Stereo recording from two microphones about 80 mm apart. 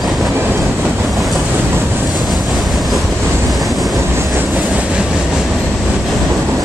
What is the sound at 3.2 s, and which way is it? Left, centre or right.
Vehicle, right.